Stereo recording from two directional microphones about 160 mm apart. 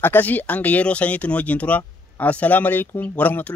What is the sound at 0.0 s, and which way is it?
Speech, 10° left (ahead or behind).